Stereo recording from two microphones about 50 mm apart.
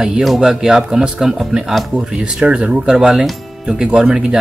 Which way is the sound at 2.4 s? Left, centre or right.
Right.